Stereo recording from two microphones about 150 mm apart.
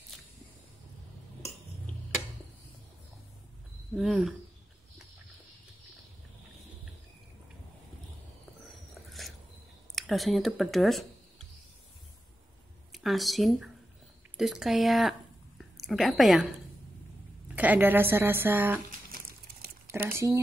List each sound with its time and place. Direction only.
3.9 s speech: centre (ahead or behind)
9.9 s speech: centre (ahead or behind)
12.9 s speech: centre (ahead or behind)
17.6 s a woman's voice: 10° right (ahead or behind)
18.9 s a sound: 80° right
19.9 s speech: 15° right (ahead or behind)